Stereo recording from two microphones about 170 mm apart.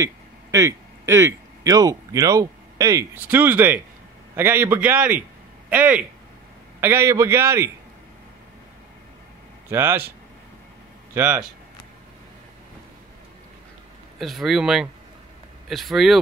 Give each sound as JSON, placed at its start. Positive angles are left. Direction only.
{"t": 0.0, "sound": "a man's voice", "side_deg": -20}
{"t": 9.7, "sound": "a man's voice", "side_deg": -15}
{"t": 11.1, "sound": "a man's voice", "side_deg": -10}
{"t": 14.1, "sound": "speech", "side_deg": 0}